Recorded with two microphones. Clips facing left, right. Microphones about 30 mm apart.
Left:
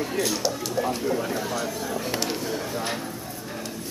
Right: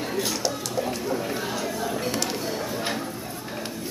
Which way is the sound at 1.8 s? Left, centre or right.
Centre.